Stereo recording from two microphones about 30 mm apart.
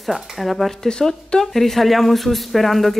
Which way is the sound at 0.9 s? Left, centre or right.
Left.